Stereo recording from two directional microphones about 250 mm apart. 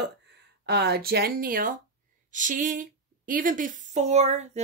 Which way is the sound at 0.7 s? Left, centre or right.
Right.